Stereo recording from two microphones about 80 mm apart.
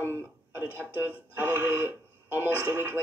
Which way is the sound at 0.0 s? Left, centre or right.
Right.